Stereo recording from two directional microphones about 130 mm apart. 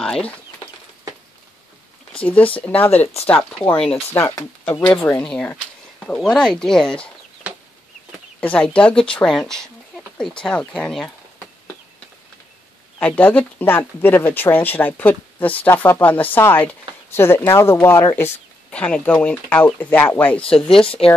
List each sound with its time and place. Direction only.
0.0 s speech: 5° left (ahead or behind)
2.2 s speech: 10° left (ahead or behind)
4.9 s speech: 10° left (ahead or behind)
8.4 s speech: 10° left (ahead or behind)
13.0 s speech: 10° left (ahead or behind)
20.8 s speech: 45° left (ahead or behind)